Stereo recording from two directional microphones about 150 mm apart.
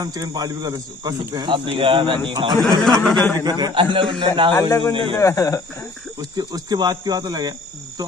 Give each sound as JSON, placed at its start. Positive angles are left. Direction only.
{"t": 0.0, "sound": "a man's voice", "side_deg": -25}
{"t": 2.5, "sound": "a man's voice", "side_deg": 5}
{"t": 3.4, "sound": "a man's voice", "side_deg": -30}
{"t": 4.6, "sound": "speech", "side_deg": 20}
{"t": 6.3, "sound": "speech", "side_deg": -25}